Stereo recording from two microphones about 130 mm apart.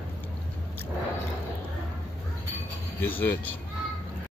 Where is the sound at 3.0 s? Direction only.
15° left (ahead or behind).